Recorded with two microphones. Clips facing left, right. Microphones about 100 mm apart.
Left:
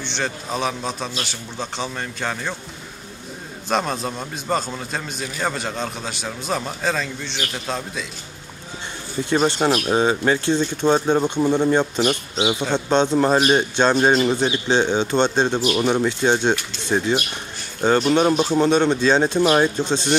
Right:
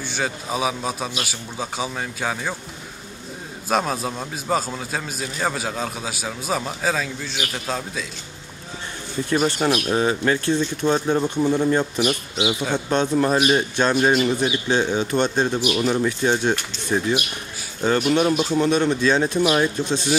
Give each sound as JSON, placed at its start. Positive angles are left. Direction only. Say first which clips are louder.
{"t": 0.0, "sound": "a man's voice", "louder": "even", "side_deg": -5}
{"t": 3.6, "sound": "a man's voice", "louder": "even", "side_deg": -5}
{"t": 9.3, "sound": "speech", "louder": "left 2 dB", "side_deg": 25}